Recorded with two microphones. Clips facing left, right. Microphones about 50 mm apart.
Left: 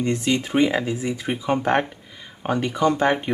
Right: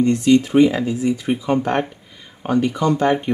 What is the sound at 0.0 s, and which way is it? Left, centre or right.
Speech, left.